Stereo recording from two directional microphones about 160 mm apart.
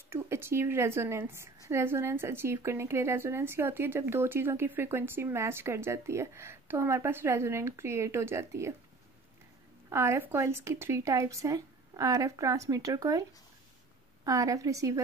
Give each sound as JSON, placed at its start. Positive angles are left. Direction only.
{"t": 0.1, "sound": "a woman's voice", "side_deg": -15}
{"t": 9.8, "sound": "speech", "side_deg": -15}